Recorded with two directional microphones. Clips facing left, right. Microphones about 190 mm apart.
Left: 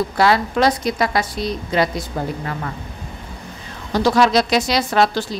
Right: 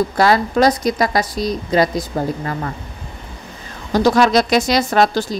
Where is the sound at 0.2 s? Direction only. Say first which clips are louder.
Right 2 dB; 40° right (ahead or behind).